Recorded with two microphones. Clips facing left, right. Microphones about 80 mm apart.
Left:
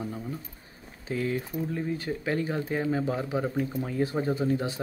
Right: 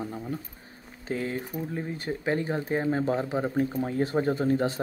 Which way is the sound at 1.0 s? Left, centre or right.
Right.